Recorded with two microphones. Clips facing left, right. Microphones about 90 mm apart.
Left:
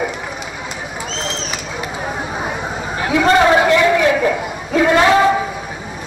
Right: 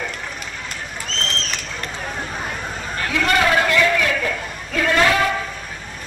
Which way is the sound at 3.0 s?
15° left (ahead or behind).